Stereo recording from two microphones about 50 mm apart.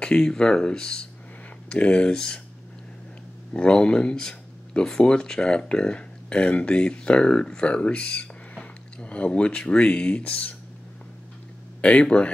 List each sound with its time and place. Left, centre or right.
0.0 s speech: centre
3.5 s speech: left
11.8 s speech: left